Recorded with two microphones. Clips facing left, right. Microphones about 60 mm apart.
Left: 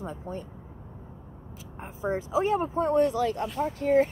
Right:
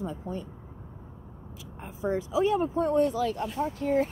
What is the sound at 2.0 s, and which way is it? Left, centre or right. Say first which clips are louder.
A woman's voice: even; left.